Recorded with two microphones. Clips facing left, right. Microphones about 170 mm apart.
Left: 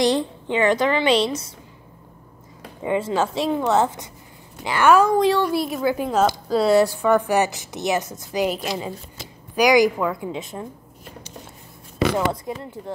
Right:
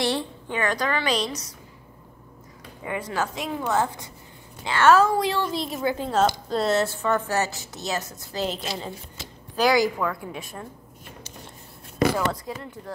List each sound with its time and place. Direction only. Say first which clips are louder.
0.0 s a woman's voice: left 6 dB; 20° left (ahead or behind)
2.8 s a woman's voice: left 7 dB; 25° left (ahead or behind)
12.1 s a woman's voice: left 3 dB; 20° left (ahead or behind)